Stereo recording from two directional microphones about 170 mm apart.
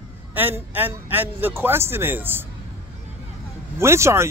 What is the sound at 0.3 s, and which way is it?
Speech, 10° right (ahead or behind).